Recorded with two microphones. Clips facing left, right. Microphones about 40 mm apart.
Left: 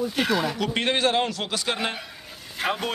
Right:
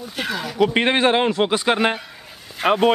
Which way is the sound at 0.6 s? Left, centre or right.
Right.